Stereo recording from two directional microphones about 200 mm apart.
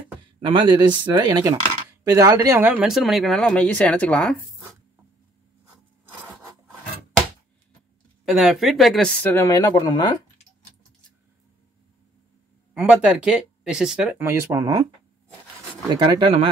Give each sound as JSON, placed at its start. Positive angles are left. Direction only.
{"t": 0.4, "sound": "speech", "side_deg": -25}
{"t": 8.3, "sound": "speech", "side_deg": -5}
{"t": 12.7, "sound": "speech", "side_deg": -5}
{"t": 15.9, "sound": "speech", "side_deg": -20}